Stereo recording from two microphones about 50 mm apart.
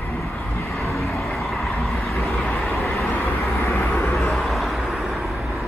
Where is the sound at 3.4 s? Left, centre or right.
Left.